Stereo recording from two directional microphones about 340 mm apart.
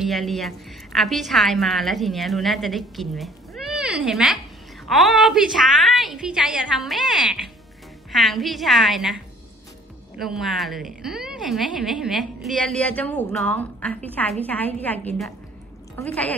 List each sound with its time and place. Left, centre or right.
0.0 s a woman's voice: centre